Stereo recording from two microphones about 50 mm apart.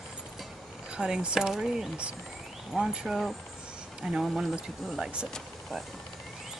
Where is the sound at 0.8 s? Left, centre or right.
Centre.